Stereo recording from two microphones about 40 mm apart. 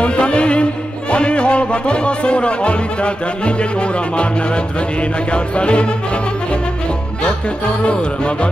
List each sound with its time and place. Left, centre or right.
0.0 s music: left
7.8 s music: left